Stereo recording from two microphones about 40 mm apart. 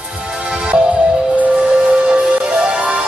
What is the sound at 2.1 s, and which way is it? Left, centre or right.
Music, right.